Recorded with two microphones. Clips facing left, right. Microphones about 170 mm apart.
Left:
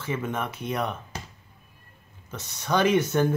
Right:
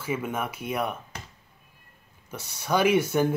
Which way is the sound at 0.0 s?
10° right (ahead or behind).